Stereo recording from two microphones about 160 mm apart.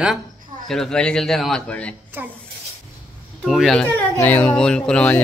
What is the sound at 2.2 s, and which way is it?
Speech, 10° right (ahead or behind).